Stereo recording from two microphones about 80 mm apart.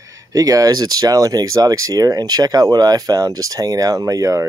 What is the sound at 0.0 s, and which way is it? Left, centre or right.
Speech, right.